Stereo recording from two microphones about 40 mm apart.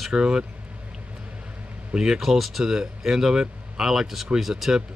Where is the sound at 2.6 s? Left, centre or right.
Centre.